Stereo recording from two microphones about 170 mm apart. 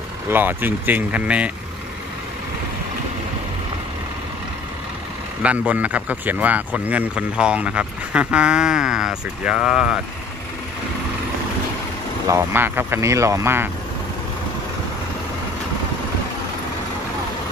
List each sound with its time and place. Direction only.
0.3 s speech: 10° right (ahead or behind)
5.4 s speech: 5° right (ahead or behind)
12.3 s speech: 10° right (ahead or behind)